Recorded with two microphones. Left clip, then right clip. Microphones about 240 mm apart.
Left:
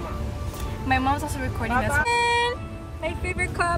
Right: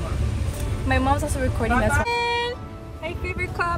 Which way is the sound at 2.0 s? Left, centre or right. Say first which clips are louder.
Left 2 dB; centre.